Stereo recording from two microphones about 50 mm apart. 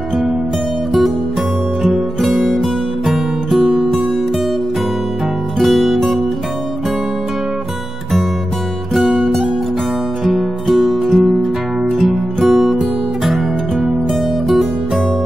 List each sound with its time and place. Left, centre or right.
1.9 s music: centre
3.5 s music: centre
5.6 s music: centre
9.1 s music: centre
10.2 s music: centre
12.4 s music: centre